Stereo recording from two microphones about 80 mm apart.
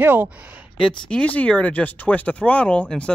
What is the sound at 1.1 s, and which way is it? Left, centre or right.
Speech, centre.